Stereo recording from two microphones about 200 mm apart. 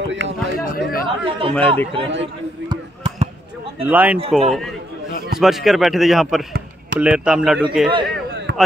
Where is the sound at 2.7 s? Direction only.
30° right (ahead or behind).